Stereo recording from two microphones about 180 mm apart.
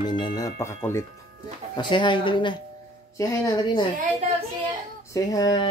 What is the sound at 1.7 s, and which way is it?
Speech, 25° left (ahead or behind).